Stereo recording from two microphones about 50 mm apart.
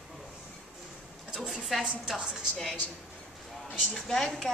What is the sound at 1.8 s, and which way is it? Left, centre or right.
Speech, centre.